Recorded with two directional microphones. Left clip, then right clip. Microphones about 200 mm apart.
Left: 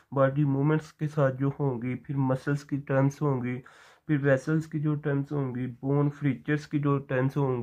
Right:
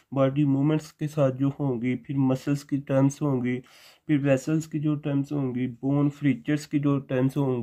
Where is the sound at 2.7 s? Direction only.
40° right (ahead or behind).